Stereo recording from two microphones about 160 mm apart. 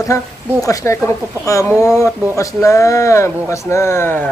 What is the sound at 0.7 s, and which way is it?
Speech, 20° left (ahead or behind).